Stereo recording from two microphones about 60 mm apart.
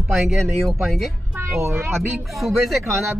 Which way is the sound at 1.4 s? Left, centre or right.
Right.